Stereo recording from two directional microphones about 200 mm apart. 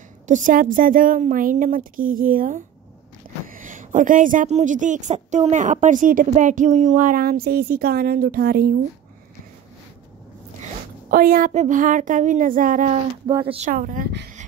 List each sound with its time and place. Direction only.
0.3 s a woman's voice: 40° right (ahead or behind)
10.6 s a woman's voice: 45° right (ahead or behind)